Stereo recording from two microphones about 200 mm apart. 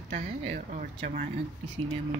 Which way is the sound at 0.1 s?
35° right (ahead or behind).